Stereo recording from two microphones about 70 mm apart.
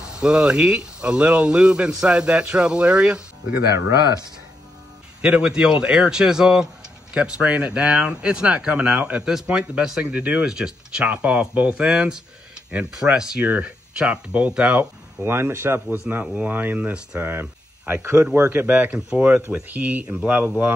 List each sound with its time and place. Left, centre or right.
0.2 s speech: centre
5.2 s speech: centre
10.0 s speech: right
14.8 s speech: right
17.2 s speech: right
18.9 s speech: centre